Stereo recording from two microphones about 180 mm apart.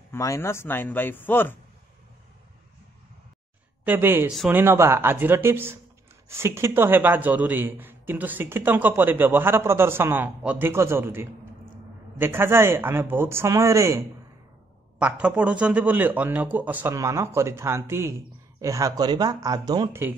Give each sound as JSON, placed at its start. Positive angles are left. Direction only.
{"t": 0.1, "sound": "speech", "side_deg": 15}
{"t": 3.8, "sound": "a man's voice", "side_deg": -10}